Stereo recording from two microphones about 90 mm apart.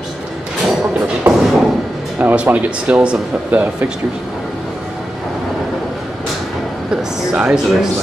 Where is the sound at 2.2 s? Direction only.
20° right (ahead or behind).